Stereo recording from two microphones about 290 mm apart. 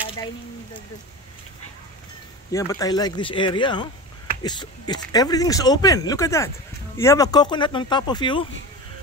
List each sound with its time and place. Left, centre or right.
2.5 s speech: centre